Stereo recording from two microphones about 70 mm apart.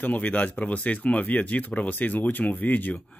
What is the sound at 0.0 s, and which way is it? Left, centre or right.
Speech, left.